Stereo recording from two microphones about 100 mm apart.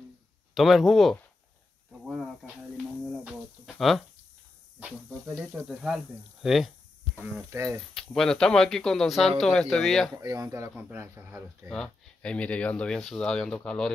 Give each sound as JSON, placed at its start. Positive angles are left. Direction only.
{"t": 0.6, "sound": "speech", "side_deg": 0}
{"t": 3.3, "sound": "cricket", "side_deg": -5}
{"t": 5.5, "sound": "speech", "side_deg": -5}
{"t": 7.5, "sound": "speech", "side_deg": -25}
{"t": 7.9, "sound": "speech", "side_deg": 5}
{"t": 10.1, "sound": "speech", "side_deg": -35}
{"t": 10.8, "sound": "speech", "side_deg": -20}
{"t": 11.7, "sound": "speech", "side_deg": 10}